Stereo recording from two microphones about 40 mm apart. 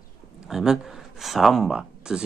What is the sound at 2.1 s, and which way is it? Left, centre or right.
Speech, centre.